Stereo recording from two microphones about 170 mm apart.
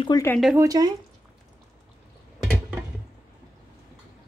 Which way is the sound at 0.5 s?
20° right (ahead or behind).